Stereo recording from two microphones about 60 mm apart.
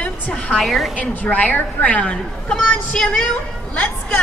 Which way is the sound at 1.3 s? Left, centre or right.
Left.